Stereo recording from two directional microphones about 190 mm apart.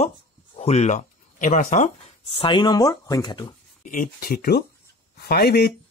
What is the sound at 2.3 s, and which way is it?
Speech, 25° left (ahead or behind).